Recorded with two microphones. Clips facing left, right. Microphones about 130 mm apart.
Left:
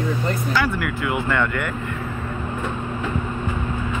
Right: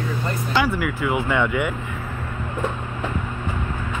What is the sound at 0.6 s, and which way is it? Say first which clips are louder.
Speech: right 1 dB; 5° right (ahead or behind).